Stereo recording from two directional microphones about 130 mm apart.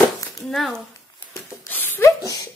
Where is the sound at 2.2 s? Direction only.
30° left (ahead or behind).